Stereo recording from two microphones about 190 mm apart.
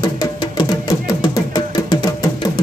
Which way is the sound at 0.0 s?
20° left (ahead or behind).